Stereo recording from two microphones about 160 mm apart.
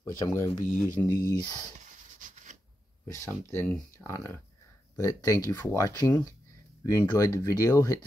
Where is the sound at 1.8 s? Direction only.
50° right (ahead or behind).